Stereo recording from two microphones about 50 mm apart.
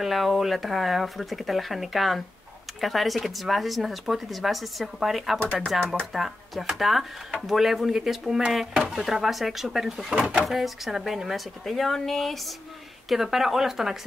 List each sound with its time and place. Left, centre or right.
0.0 s speech: centre
5.4 s speech: left
6.1 s speech: centre